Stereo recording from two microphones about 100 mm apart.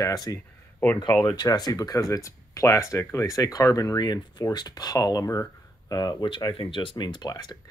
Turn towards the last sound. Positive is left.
turn(degrees=40)  # may be behind; listen again after turning